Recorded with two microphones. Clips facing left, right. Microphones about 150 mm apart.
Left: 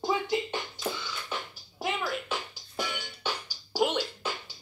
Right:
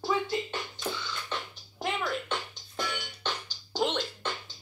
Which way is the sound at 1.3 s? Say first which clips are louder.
Even; 5° left (ahead or behind).